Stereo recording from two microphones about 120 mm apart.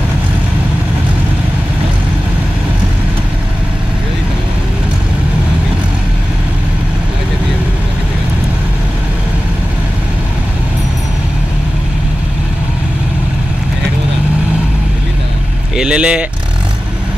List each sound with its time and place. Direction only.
15.7 s speech: 5° right (ahead or behind)